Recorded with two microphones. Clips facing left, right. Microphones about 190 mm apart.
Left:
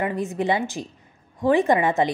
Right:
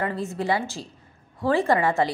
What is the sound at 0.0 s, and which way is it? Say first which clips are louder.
A woman's voice: left 3 dB; 20° left (ahead or behind).